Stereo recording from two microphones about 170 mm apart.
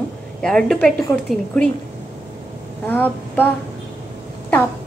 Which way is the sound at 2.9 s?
10° left (ahead or behind).